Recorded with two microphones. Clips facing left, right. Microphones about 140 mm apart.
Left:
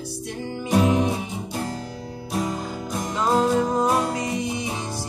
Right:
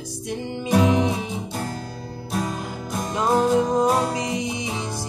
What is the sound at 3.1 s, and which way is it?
Music, 15° right (ahead or behind).